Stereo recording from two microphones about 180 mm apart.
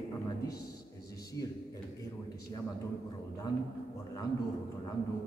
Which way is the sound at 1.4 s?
20° left (ahead or behind).